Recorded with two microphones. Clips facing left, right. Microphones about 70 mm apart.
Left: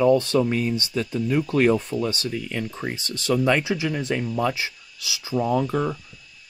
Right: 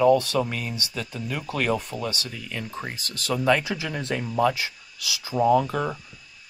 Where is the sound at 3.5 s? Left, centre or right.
Centre.